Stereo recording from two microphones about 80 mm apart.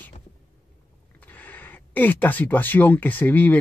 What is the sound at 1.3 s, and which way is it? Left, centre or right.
Speech, left.